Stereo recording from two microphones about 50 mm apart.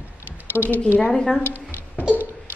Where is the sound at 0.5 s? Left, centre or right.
Left.